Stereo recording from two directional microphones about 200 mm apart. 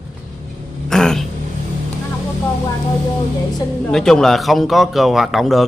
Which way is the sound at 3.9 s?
Centre (ahead or behind).